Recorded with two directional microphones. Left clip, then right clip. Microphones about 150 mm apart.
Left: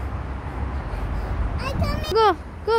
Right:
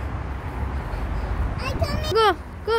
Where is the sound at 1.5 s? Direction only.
70° left (ahead or behind).